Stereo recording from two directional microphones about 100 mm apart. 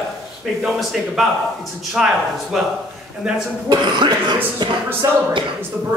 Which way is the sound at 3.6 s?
50° right (ahead or behind).